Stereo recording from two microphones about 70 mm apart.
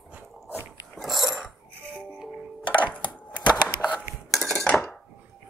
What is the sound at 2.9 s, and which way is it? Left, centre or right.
Wood, centre.